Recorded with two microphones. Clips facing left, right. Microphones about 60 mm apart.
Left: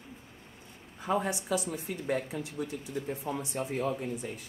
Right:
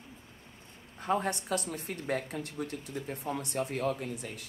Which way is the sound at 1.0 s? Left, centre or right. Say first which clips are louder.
Even; right.